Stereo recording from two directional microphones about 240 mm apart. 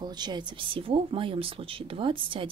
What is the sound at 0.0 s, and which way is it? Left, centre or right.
Speech, centre.